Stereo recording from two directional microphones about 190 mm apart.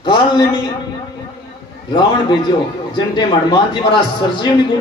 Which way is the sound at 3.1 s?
25° left (ahead or behind).